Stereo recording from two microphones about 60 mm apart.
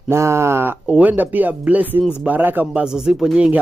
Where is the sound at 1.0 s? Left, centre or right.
Right.